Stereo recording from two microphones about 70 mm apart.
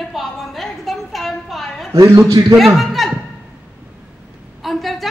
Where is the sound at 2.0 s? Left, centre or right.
Right.